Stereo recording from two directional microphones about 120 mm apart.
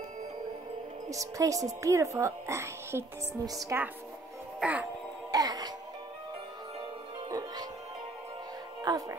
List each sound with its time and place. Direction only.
1.1 s a woman's voice: 30° right (ahead or behind)
4.6 s music: 10° right (ahead or behind)
5.3 s music: 30° right (ahead or behind)
7.2 s music: 30° right (ahead or behind)
8.9 s speech: 35° right (ahead or behind)